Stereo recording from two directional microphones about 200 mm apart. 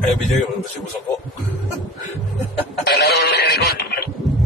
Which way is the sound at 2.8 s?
55° left (ahead or behind).